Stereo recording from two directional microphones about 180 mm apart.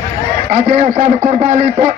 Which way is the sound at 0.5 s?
45° right (ahead or behind).